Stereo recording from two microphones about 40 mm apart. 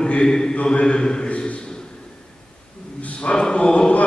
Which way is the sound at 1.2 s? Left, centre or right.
Left.